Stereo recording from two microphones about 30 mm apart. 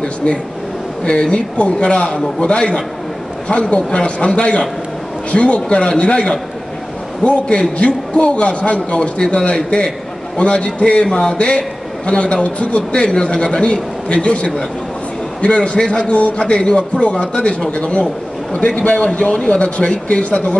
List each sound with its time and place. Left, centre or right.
0.0 s a man's voice: left
7.4 s a man's voice: left